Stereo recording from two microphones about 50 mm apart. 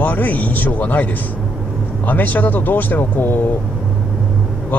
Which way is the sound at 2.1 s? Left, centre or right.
Left.